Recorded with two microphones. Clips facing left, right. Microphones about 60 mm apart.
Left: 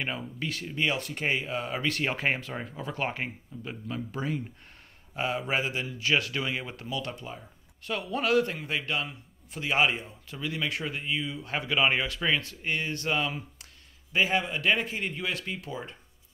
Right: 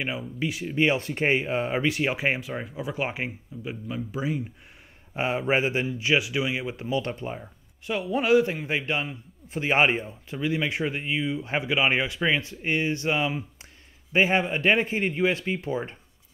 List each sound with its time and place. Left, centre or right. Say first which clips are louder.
0.4 s speech: right 5 dB; centre
0.7 s a man's voice: right 6 dB; right
1.9 s speech: right 3 dB; centre
5.1 s a man's voice: right 5 dB; right; by 6.9 s centre
6.9 s speech: right 7 dB; right
7.8 s a man's voice: right 4 dB; centre
14.1 s a man's voice: right 4 dB; right